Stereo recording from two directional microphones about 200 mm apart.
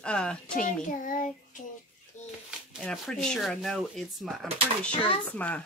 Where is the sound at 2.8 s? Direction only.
5° left (ahead or behind).